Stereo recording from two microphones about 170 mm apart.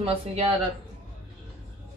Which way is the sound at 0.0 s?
35° right (ahead or behind).